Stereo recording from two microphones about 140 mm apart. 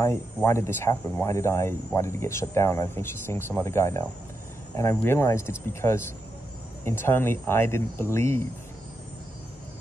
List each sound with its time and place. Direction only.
0.0 s speech: 20° left (ahead or behind)